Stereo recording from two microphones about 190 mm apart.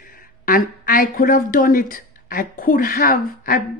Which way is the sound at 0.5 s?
50° left (ahead or behind).